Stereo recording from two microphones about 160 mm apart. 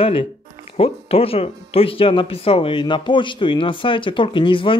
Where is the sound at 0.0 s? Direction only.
35° left (ahead or behind).